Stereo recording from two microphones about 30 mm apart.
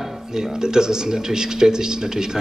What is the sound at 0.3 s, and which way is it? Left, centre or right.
A man's voice, right.